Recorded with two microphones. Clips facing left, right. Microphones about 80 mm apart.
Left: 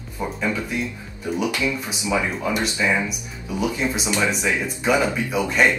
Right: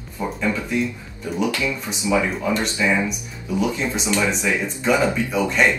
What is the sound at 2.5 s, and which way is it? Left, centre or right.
Speech, centre.